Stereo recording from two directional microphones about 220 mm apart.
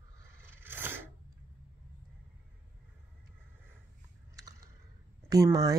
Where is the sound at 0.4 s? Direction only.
10° right (ahead or behind).